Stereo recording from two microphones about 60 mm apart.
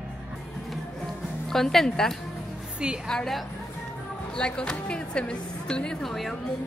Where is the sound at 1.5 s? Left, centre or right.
Centre.